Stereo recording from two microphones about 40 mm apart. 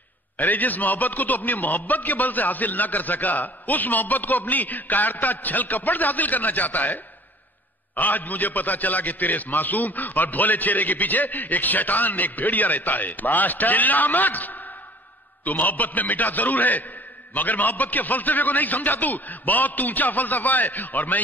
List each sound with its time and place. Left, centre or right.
0.4 s a man's voice: left